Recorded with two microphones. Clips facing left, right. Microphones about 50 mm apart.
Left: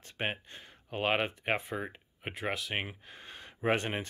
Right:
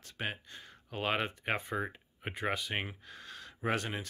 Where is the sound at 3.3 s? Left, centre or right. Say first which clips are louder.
Left 4 dB; left.